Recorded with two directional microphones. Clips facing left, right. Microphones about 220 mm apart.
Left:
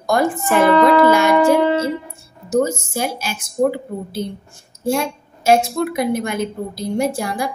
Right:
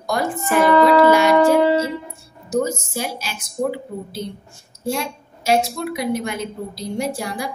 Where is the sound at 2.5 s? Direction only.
50° left (ahead or behind).